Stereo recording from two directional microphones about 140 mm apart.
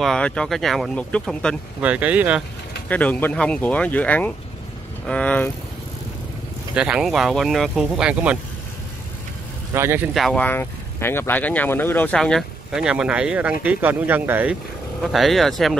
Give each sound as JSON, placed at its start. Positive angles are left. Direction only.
{"t": 0.0, "sound": "speech", "side_deg": 5}
{"t": 1.8, "sound": "speech", "side_deg": -10}
{"t": 2.9, "sound": "speech", "side_deg": 10}
{"t": 6.7, "sound": "speech", "side_deg": -5}
{"t": 9.8, "sound": "speech", "side_deg": -15}
{"t": 10.1, "sound": "speech", "side_deg": 0}
{"t": 10.4, "sound": "speech", "side_deg": 15}
{"t": 12.2, "sound": "speech", "side_deg": 0}
{"t": 15.0, "sound": "speech", "side_deg": 0}